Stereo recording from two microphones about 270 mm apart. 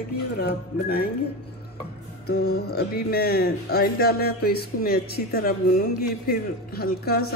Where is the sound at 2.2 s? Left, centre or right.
Left.